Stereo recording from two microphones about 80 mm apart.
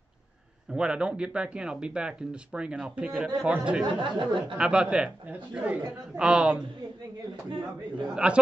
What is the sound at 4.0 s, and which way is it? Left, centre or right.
Speech, right.